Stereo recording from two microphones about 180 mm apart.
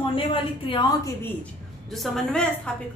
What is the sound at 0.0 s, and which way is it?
A woman's voice, 30° left (ahead or behind).